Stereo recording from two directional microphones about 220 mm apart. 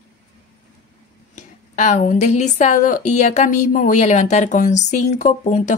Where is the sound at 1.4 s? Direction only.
35° left (ahead or behind).